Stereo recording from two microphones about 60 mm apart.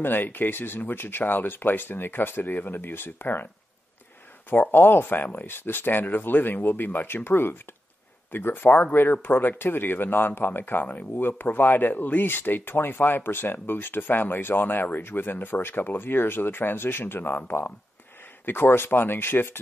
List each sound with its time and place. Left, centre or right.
0.0 s speech: left
4.5 s speech: left